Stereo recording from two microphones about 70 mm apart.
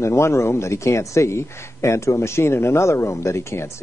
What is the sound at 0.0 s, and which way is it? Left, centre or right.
Speech, left.